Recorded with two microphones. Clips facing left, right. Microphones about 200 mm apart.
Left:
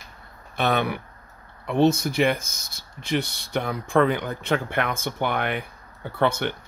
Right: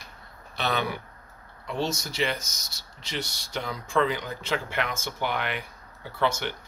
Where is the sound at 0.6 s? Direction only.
55° left (ahead or behind).